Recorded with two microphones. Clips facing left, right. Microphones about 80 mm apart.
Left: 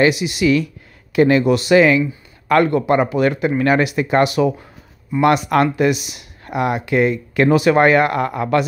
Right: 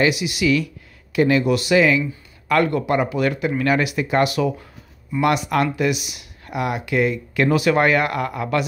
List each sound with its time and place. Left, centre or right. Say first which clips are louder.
0.0 s speech: left 4 dB; left
4.3 s speech: left 4 dB; left
5.2 s speech: left 4 dB; left